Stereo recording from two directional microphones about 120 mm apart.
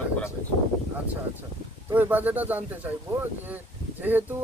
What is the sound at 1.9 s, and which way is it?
Speech, 15° right (ahead or behind).